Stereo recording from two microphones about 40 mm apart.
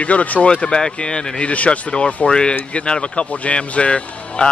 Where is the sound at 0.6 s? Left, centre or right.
Left.